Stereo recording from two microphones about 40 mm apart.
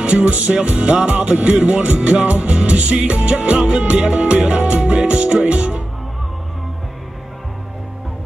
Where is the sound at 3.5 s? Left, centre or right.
Centre.